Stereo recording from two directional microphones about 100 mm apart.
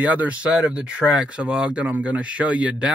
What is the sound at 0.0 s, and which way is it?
Speech, 15° right (ahead or behind).